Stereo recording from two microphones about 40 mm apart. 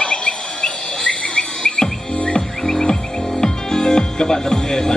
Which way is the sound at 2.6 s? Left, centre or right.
Centre.